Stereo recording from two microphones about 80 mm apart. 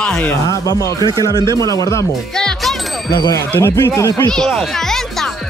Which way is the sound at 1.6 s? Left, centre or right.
Left.